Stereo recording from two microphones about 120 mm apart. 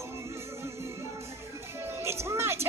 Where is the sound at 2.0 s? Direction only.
20° right (ahead or behind).